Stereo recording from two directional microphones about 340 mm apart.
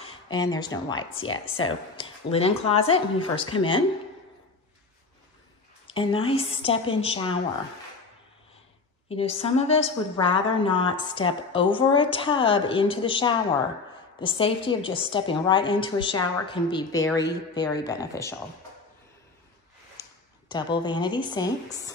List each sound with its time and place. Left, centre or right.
0.0 s speech: centre
5.9 s speech: centre
9.1 s speech: centre
20.0 s speech: centre